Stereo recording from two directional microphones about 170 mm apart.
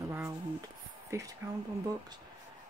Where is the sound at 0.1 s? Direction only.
15° right (ahead or behind).